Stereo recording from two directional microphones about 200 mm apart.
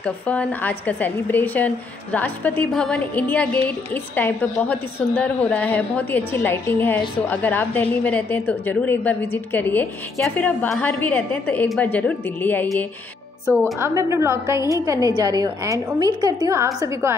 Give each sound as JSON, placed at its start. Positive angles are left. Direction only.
{"t": 0.0, "sound": "a woman's voice", "side_deg": 5}
{"t": 13.7, "sound": "a woman's voice", "side_deg": -15}